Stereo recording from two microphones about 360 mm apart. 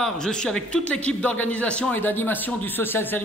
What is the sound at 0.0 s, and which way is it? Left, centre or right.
A man's voice, centre.